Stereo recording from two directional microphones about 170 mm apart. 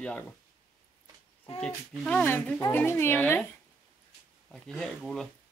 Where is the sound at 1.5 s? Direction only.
5° left (ahead or behind).